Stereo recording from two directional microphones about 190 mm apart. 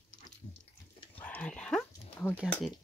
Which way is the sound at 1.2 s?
10° left (ahead or behind).